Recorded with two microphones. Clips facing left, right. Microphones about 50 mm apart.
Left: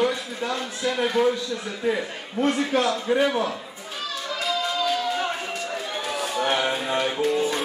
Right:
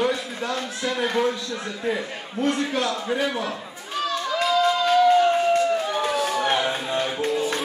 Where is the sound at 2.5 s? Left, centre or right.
Centre.